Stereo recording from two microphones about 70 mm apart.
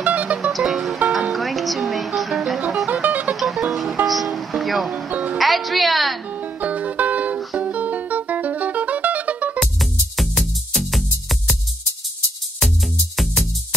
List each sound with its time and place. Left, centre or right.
0.0 s music: right
0.5 s music: centre
2.9 s music: right
3.3 s music: centre
5.1 s music: right
5.4 s music: centre
6.4 s music: right
9.6 s music: centre
12.5 s music: centre